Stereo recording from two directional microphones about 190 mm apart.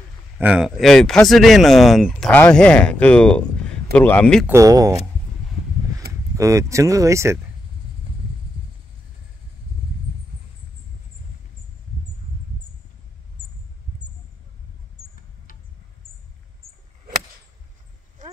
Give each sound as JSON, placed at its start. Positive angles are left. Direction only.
{"t": 0.4, "sound": "speech", "side_deg": -5}
{"t": 4.5, "sound": "speech", "side_deg": -15}
{"t": 6.3, "sound": "speech", "side_deg": -15}
{"t": 18.2, "sound": "a sound", "side_deg": -45}